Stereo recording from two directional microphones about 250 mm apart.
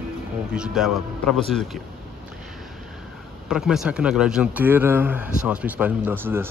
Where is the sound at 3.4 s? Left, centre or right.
Centre.